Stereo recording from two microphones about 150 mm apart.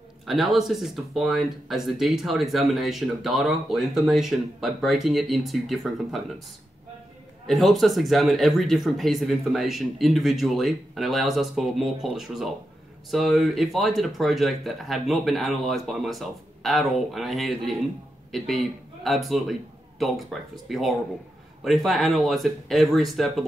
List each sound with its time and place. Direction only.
0.3 s speech: centre (ahead or behind)
7.4 s speech: centre (ahead or behind)